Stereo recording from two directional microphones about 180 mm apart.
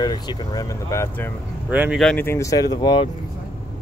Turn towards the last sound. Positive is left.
turn(degrees=25)  # may be behind; listen again after turning